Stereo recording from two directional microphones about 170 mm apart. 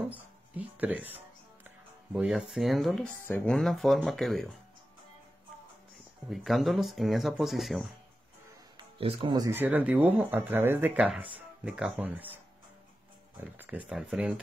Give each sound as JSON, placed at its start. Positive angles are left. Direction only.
{"t": 0.1, "sound": "speech", "side_deg": -10}
{"t": 3.3, "sound": "speech", "side_deg": 10}
{"t": 6.3, "sound": "speech", "side_deg": 0}
{"t": 8.7, "sound": "speech", "side_deg": -30}
{"t": 9.6, "sound": "speech", "side_deg": -10}
{"t": 13.4, "sound": "speech", "side_deg": -10}